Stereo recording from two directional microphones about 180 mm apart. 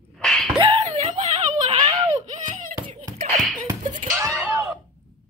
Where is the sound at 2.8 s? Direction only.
30° right (ahead or behind).